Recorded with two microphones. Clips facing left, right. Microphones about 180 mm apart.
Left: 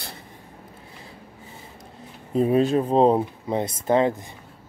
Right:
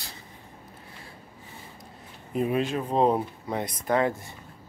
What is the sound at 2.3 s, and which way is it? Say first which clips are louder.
Speech: left 7 dB; 35° left (ahead or behind).